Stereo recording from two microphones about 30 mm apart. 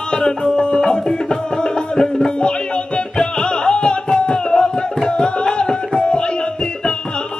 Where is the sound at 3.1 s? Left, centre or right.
Left.